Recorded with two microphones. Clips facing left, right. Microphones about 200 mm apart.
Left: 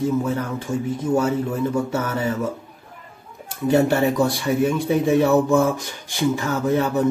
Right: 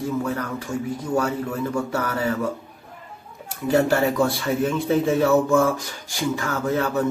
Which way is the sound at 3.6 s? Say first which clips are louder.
Left 2 dB; 20° left (ahead or behind).